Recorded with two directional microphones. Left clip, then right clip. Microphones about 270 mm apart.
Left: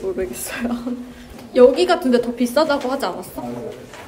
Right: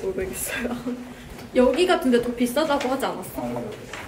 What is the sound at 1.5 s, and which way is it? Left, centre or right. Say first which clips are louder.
A woman's voice: left 6 dB; centre.